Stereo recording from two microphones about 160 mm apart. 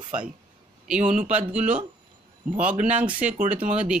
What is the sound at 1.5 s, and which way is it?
Speech, 10° right (ahead or behind).